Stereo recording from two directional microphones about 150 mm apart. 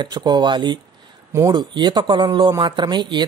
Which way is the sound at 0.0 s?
30° right (ahead or behind).